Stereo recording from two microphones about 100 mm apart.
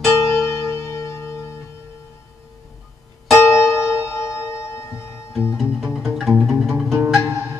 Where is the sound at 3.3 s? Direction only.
25° left (ahead or behind).